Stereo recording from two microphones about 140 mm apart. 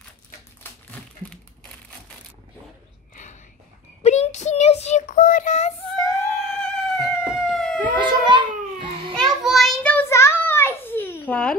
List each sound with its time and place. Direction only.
0.7 s crumpling: 15° left (ahead or behind)
4.0 s child singing: 55° left (ahead or behind)
5.9 s music: 25° left (ahead or behind)
6.4 s howl: 5° left (ahead or behind)
8.3 s babbling: 35° right (ahead or behind)
9.1 s child singing: centre (ahead or behind)
9.9 s a sound: 20° left (ahead or behind)